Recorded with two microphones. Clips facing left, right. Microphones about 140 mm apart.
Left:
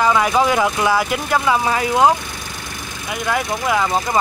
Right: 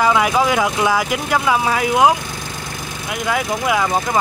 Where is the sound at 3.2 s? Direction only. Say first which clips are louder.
Right 1 dB; 5° right (ahead or behind).